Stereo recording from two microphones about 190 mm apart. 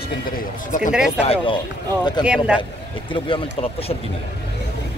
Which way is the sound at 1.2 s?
30° left (ahead or behind).